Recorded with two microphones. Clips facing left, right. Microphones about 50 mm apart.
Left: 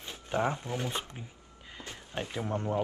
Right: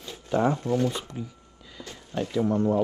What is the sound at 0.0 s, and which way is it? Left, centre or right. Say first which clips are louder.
Shuffling cards: right 6 dB; left.